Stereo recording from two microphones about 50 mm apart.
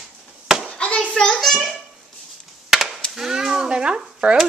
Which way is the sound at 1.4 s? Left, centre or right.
Centre.